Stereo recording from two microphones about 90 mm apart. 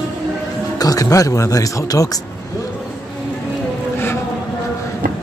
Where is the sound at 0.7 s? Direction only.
40° left (ahead or behind).